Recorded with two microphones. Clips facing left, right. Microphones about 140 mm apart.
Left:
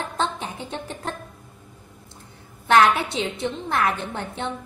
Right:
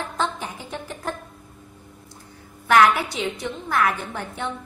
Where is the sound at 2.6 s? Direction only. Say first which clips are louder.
Even; 25° left (ahead or behind).